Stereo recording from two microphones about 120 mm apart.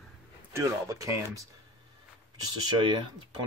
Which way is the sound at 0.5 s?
20° right (ahead or behind).